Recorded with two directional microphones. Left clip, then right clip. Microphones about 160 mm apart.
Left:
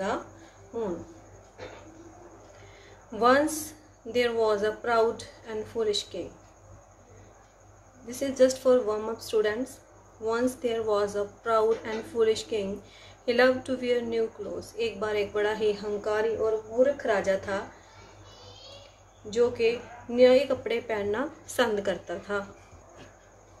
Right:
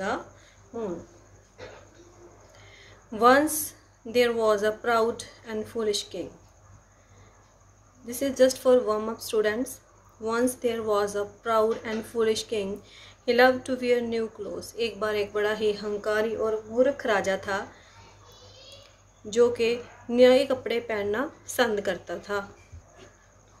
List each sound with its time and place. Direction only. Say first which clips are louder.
3.1 s speech: right 3 dB; 25° right (ahead or behind)
8.1 s speech: right 1 dB; 25° right (ahead or behind)
19.3 s speech: right 2 dB; 30° right (ahead or behind)